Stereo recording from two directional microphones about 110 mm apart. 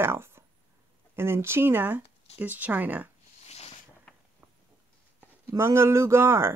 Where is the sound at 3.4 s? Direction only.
70° left (ahead or behind).